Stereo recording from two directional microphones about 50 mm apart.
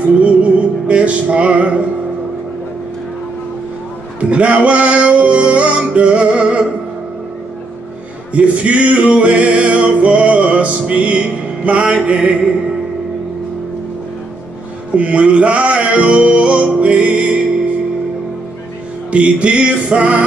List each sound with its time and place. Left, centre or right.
0.0 s music: right
4.2 s music: right
8.3 s male singing: right
14.9 s music: right
19.0 s male singing: right